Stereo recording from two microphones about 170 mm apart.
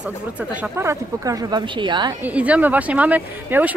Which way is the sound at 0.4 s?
10° right (ahead or behind).